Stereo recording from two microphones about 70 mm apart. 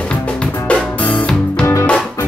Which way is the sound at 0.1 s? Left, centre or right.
Centre.